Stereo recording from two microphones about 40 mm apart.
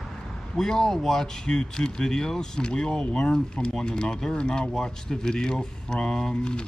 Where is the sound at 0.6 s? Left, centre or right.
Centre.